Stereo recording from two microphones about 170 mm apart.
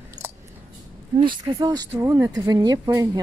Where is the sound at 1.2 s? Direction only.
25° right (ahead or behind).